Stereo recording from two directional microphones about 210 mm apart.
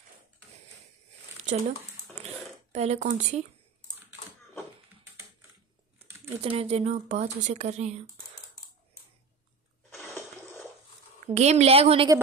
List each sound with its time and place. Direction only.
1.4 s speech: 35° right (ahead or behind)
6.4 s speech: 30° right (ahead or behind)
9.9 s water: 10° left (ahead or behind)
11.2 s a woman's voice: 30° right (ahead or behind)